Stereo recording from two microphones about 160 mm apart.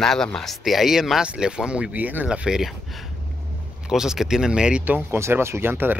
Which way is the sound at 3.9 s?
5° right (ahead or behind).